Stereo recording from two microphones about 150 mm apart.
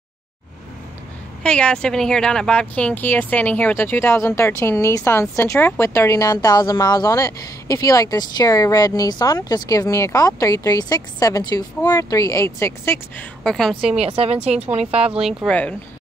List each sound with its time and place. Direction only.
1.4 s speech: 5° left (ahead or behind)
13.4 s a woman's voice: 5° left (ahead or behind)
13.9 s a woman's voice: 40° right (ahead or behind)
15.2 s a woman's voice: 5° left (ahead or behind)